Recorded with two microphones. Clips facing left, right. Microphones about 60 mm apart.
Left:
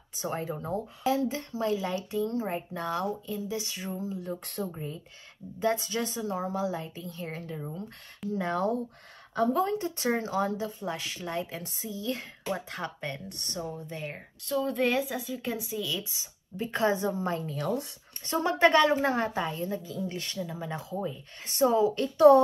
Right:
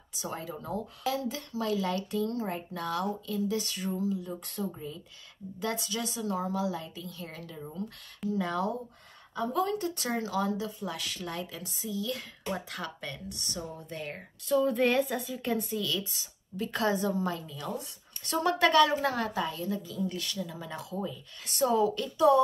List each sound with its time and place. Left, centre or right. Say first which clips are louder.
0.1 s a woman's voice: left 4 dB; left
0.6 s speech: left 2 dB; left
4.7 s a woman's voice: left 2 dB; left
11.4 s a woman's voice: left 1 dB; left
13.3 s a woman's voice: right 1 dB; left
13.6 s a woman's voice: left 4 dB; centre
17.4 s speech: left 7 dB; left
18.2 s a woman's voice: left 2 dB; left